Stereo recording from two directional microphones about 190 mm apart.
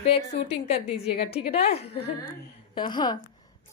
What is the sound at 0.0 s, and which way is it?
A woman's voice, 30° left (ahead or behind).